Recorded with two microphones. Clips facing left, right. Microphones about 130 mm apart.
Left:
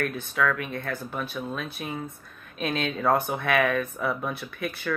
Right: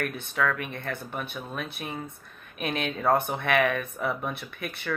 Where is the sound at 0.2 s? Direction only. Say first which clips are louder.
Left 2 dB; 55° right (ahead or behind).